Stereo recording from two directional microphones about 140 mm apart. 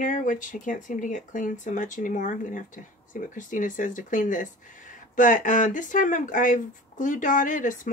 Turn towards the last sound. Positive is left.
turn(degrees=70)  # may be behind; listen again after turning